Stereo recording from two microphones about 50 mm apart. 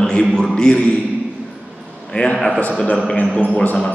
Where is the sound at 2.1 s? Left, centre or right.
Centre.